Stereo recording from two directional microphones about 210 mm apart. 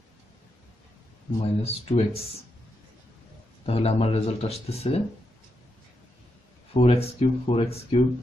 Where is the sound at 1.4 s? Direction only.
30° left (ahead or behind).